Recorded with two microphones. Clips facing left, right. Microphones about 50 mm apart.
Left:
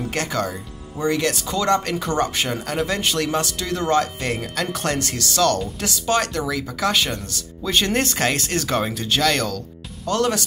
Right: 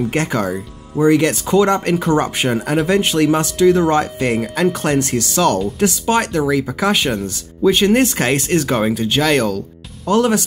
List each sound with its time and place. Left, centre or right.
0.1 s speech: centre